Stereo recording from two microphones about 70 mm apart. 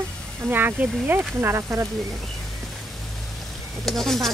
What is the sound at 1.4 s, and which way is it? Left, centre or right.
Speech, right.